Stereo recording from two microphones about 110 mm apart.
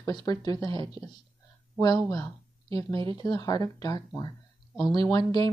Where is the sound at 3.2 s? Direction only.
35° left (ahead or behind).